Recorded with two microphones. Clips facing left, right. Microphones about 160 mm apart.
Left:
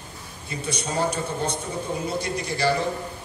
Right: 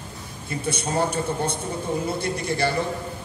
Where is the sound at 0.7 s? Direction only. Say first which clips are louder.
Right 1 dB; 55° right (ahead or behind).